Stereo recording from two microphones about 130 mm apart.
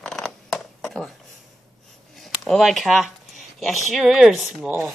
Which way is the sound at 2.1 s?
Centre (ahead or behind).